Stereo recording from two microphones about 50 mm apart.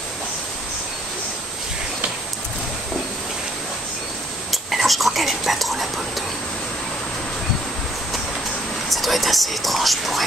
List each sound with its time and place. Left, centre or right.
4.5 s whispering: centre
8.9 s speech: centre